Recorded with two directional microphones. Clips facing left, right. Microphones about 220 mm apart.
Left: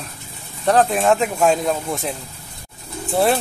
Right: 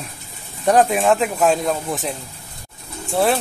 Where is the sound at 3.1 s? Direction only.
Centre (ahead or behind).